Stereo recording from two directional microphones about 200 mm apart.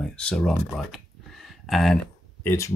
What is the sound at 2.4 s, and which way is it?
Speech, 15° left (ahead or behind).